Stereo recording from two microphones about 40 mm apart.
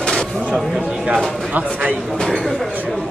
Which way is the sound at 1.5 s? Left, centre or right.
Right.